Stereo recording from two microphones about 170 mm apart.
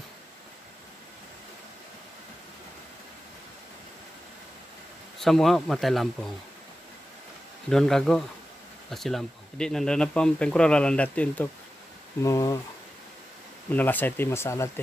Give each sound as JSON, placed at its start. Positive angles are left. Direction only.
{"t": 5.2, "sound": "speech", "side_deg": 0}
{"t": 7.7, "sound": "speech", "side_deg": 5}
{"t": 12.2, "sound": "speech", "side_deg": 20}
{"t": 13.7, "sound": "speech", "side_deg": 10}